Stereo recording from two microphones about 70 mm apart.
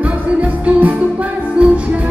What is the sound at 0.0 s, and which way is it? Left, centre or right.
Music, right.